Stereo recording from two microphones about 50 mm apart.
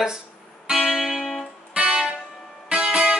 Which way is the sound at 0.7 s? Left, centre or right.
Centre.